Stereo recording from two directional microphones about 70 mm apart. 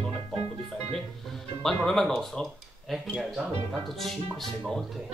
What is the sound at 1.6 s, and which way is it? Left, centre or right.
Speech, centre.